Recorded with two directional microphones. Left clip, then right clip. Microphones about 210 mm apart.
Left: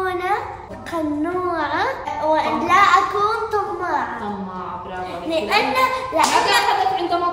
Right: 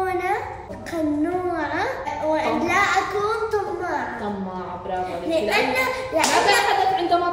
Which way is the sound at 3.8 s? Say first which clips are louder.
Left 4 dB; centre (ahead or behind).